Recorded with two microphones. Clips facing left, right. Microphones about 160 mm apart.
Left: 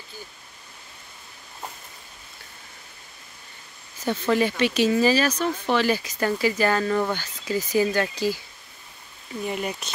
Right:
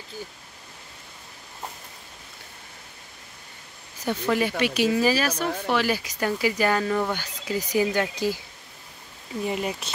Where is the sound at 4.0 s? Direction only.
10° right (ahead or behind).